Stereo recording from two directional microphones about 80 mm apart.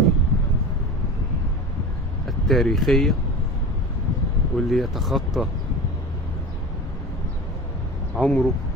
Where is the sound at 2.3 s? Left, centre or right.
Centre.